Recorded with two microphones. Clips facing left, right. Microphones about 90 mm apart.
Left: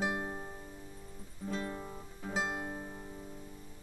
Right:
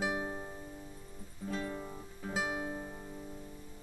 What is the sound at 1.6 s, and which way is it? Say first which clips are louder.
Music: even; 5° left (ahead or behind).